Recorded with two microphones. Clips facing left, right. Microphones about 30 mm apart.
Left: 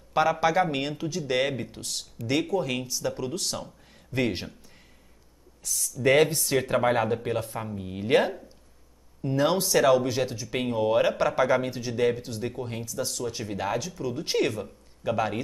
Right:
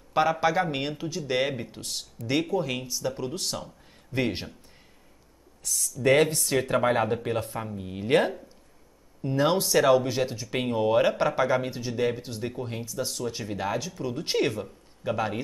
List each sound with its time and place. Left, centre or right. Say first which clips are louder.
0.2 s speech: left 1 dB; centre
3.3 s speech: left 1 dB; centre
6.1 s speech: left 2 dB; left
6.7 s speech: even; centre
8.1 s speech: even; left
9.2 s speech: even; centre
11.1 s speech: even; right
11.3 s speech: left 1 dB; centre
13.7 s speech: left 1 dB; centre
14.0 s speech: even; right
14.3 s speech: even; centre